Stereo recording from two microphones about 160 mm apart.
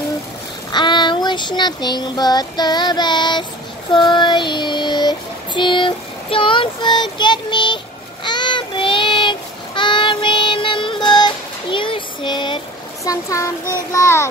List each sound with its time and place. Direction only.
0.7 s child singing: 30° left (ahead or behind)
13.0 s a child's voice: 20° left (ahead or behind)